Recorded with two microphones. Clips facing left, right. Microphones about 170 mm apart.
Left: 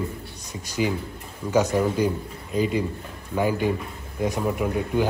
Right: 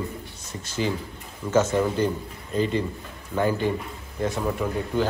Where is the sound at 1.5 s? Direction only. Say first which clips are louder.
Even; 15° left (ahead or behind).